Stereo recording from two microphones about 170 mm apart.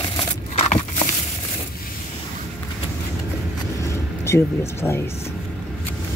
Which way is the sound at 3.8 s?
15° left (ahead or behind).